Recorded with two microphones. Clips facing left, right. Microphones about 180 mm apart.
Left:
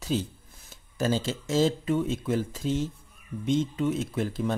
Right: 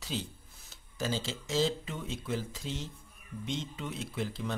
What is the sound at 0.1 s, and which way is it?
Speech, 45° left (ahead or behind).